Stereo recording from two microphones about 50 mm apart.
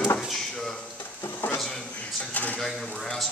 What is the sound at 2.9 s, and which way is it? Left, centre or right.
Speech, centre.